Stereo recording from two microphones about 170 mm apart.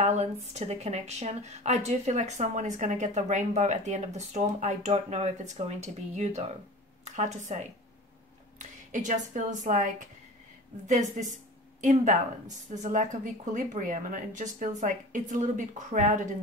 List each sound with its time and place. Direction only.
0.0 s a woman's voice: 40° right (ahead or behind)
8.5 s a woman's voice: 45° right (ahead or behind)